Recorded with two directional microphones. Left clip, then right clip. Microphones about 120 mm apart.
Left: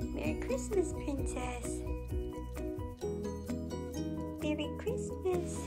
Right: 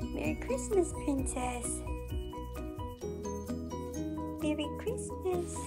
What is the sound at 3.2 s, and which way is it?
Music, 5° left (ahead or behind).